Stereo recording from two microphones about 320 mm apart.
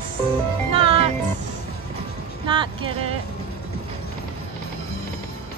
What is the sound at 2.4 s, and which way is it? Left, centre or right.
Vehicle, centre.